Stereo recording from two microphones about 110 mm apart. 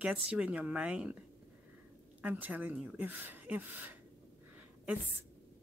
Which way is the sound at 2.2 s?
15° right (ahead or behind).